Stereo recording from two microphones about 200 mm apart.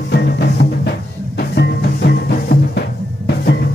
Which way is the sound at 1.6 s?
55° left (ahead or behind).